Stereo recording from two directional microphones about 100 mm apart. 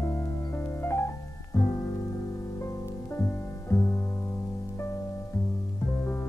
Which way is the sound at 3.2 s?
25° left (ahead or behind).